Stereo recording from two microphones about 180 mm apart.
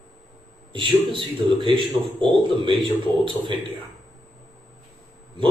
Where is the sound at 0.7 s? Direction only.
30° right (ahead or behind).